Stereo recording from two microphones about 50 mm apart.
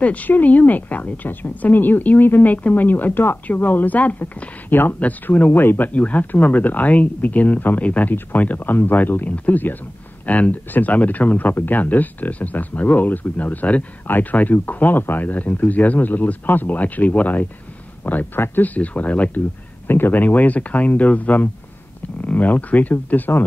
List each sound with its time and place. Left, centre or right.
0.0 s speech: left
4.6 s speech: left
5.9 s speech: left
19.9 s speech: left